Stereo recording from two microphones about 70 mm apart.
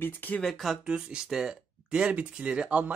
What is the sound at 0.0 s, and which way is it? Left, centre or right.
Speech, left.